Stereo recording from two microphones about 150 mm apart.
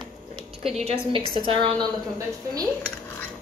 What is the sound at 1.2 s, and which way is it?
Speech, 30° left (ahead or behind).